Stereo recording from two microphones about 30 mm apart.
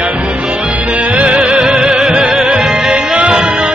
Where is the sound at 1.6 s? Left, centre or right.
Right.